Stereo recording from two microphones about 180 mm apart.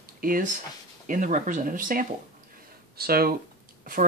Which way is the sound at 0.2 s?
50° right (ahead or behind).